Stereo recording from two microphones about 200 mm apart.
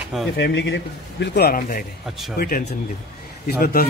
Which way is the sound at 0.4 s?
65° left (ahead or behind).